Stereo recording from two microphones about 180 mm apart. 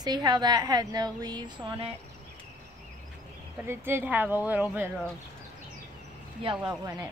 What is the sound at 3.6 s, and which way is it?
A woman's voice, 15° right (ahead or behind).